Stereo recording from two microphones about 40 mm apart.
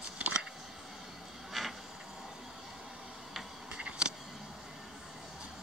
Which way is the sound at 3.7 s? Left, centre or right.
Right.